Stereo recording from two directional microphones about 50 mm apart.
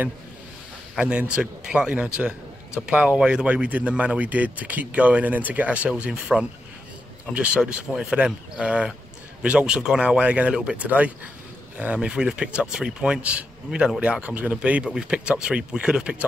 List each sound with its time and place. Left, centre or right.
0.9 s speech: right
13.7 s speech: centre
14.2 s speech: right